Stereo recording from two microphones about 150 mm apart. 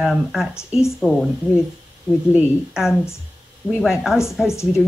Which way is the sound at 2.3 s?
5° right (ahead or behind).